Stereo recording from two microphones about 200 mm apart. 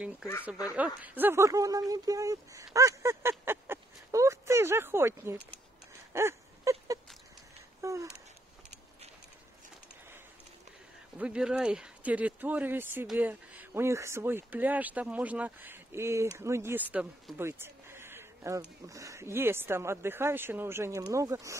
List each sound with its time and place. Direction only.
0.7 s speech: 10° right (ahead or behind)
6.1 s a sound: 15° right (ahead or behind)
7.8 s speech: 15° right (ahead or behind)
11.1 s speech: 5° right (ahead or behind)